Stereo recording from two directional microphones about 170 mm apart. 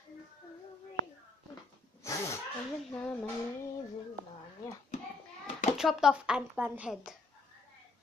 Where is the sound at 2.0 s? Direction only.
15° left (ahead or behind).